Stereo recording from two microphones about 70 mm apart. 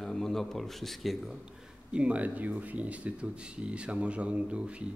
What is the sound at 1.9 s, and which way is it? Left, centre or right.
A man's voice, centre.